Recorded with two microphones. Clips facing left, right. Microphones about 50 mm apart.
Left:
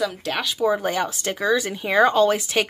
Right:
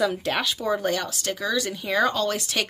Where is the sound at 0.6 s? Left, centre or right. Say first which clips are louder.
Left 4 dB; centre.